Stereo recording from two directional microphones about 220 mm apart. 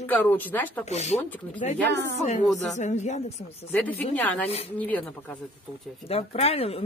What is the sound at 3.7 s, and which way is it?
Speech, 10° left (ahead or behind).